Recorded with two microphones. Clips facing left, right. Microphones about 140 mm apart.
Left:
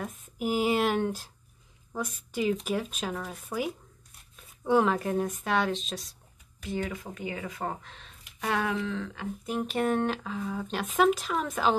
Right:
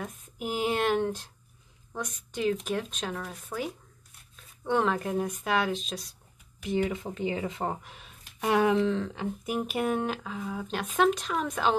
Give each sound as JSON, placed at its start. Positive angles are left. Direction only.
{"t": 0.0, "sound": "speech", "side_deg": 0}
{"t": 6.6, "sound": "speech", "side_deg": -20}
{"t": 9.5, "sound": "speech", "side_deg": -10}